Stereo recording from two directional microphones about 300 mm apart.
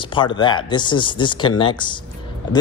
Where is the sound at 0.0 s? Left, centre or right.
Centre.